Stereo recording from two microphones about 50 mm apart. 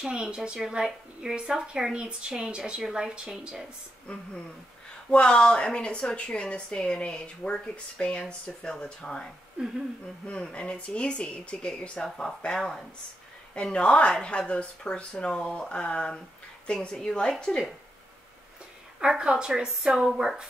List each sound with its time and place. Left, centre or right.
0.0 s a woman's voice: centre
5.1 s speech: centre
10.5 s speech: centre
12.0 s speech: centre
13.6 s a woman's voice: centre
18.9 s a woman's voice: centre